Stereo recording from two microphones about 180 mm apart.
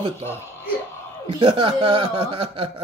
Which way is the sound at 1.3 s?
30° right (ahead or behind).